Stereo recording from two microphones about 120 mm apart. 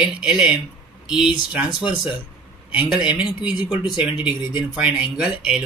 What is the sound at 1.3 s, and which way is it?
Speech, 40° left (ahead or behind).